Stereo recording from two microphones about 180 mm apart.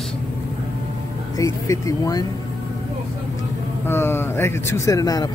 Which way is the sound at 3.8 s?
15° left (ahead or behind).